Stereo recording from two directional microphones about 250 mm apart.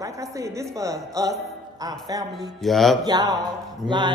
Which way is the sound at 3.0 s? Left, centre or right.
Centre.